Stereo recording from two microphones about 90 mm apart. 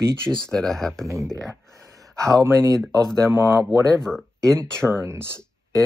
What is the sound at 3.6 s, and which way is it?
Speech, 5° left (ahead or behind).